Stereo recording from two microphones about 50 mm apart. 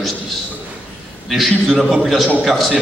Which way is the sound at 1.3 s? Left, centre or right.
Centre.